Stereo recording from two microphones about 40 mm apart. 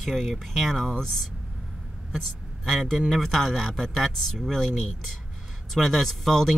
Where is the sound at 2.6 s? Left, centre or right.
Centre.